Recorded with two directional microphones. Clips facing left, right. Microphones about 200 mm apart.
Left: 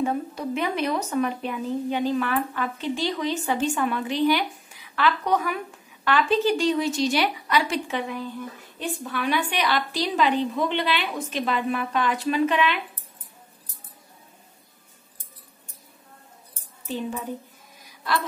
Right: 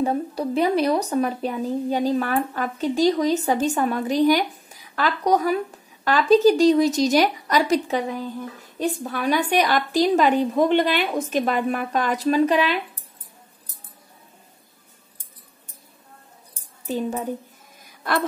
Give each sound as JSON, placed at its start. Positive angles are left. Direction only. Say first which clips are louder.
{"t": 0.0, "sound": "a woman's voice", "louder": "right 3 dB", "side_deg": -35}
{"t": 16.8, "sound": "a woman's voice", "louder": "right 4 dB", "side_deg": -40}